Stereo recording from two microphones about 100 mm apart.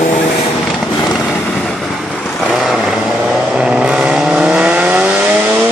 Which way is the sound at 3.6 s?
10° right (ahead or behind).